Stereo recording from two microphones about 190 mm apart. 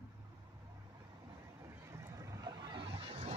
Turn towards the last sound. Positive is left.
turn(degrees=-30)  # may be behind; listen again after turning